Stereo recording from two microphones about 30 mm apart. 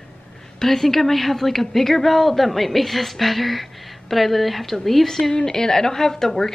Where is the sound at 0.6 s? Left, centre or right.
Centre.